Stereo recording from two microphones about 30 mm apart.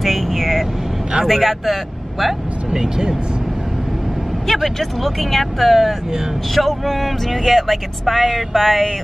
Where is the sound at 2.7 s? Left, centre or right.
Right.